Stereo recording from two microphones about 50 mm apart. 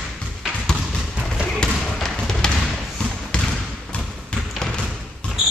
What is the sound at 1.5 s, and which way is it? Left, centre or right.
Basketball bounce, centre.